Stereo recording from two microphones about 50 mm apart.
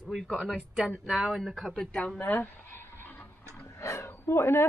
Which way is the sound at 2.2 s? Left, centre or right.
Left.